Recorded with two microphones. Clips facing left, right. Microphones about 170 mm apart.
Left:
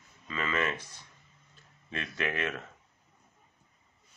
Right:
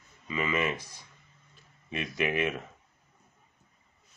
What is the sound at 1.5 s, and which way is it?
Speech, 15° right (ahead or behind).